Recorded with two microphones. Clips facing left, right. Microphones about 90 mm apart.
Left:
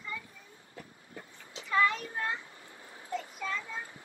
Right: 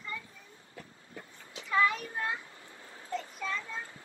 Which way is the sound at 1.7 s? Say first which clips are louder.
Even; 5° right (ahead or behind).